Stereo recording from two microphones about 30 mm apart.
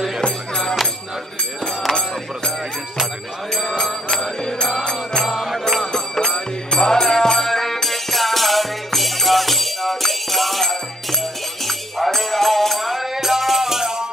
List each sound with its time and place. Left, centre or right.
1.9 s music: centre
4.1 s music: centre
5.4 s music: centre
5.8 s music: centre
13.0 s music: centre